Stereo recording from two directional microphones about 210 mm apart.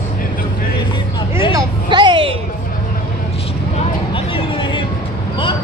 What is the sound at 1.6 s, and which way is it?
Hubbub, 20° right (ahead or behind).